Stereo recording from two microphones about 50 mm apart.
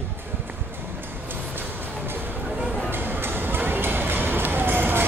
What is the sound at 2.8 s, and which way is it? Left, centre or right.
Music, right.